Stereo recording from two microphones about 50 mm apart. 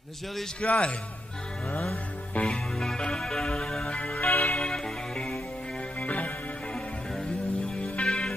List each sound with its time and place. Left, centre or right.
0.6 s a man's voice: left
2.3 s music: left
4.3 s music: left
4.6 s music: centre
5.9 s music: left
7.8 s music: left